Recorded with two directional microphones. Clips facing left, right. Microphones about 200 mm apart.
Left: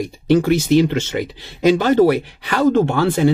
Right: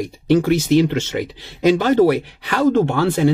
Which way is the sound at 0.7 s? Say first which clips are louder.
Left 1 dB; 5° left (ahead or behind).